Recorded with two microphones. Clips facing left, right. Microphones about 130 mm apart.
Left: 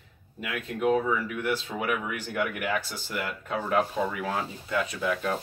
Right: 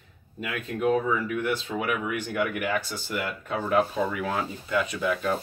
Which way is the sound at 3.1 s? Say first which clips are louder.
Right 1 dB; 25° right (ahead or behind).